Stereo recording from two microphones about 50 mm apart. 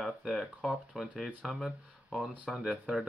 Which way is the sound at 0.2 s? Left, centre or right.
Centre.